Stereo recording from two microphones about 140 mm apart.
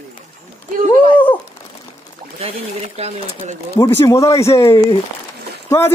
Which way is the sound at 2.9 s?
50° right (ahead or behind).